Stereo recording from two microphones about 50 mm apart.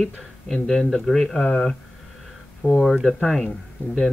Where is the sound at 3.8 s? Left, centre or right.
Left.